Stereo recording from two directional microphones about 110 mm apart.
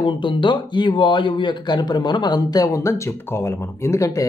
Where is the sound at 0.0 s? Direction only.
45° left (ahead or behind).